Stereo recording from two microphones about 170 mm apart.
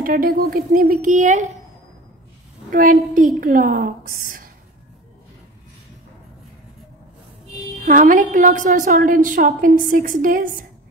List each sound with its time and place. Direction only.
0.0 s a woman's voice: 60° right (ahead or behind)
2.7 s a woman's voice: 50° right (ahead or behind)
7.8 s a woman's voice: 50° right (ahead or behind)